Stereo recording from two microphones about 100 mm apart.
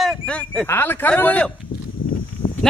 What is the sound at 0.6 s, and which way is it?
Speech, 25° left (ahead or behind).